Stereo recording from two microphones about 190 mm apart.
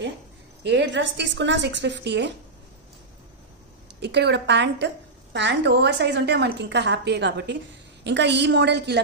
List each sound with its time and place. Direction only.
0.7 s a woman's voice: 70° right (ahead or behind)
4.0 s a woman's voice: 60° right (ahead or behind)